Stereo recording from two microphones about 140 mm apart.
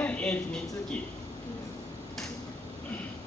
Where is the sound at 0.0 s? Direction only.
10° left (ahead or behind).